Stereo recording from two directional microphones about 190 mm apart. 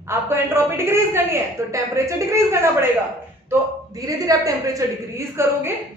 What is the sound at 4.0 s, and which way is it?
A woman's voice, 20° right (ahead or behind).